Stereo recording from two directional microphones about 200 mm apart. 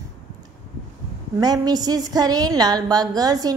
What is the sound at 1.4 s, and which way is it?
A woman's voice, 20° right (ahead or behind).